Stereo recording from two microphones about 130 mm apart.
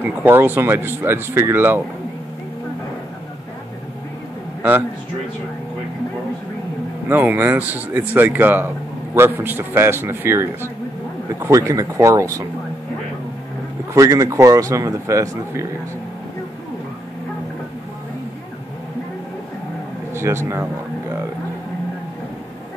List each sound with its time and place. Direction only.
0.0 s speech: 15° right (ahead or behind)
7.1 s speech: 15° right (ahead or behind)
13.9 s speech: 25° right (ahead or behind)
20.2 s speech: 20° right (ahead or behind)